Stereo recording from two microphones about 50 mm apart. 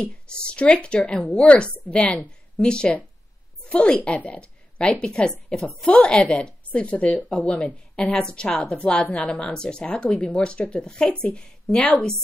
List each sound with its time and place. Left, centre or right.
0.0 s a woman's voice: centre